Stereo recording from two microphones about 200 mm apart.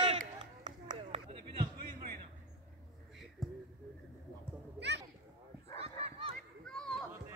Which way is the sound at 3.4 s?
Centre (ahead or behind).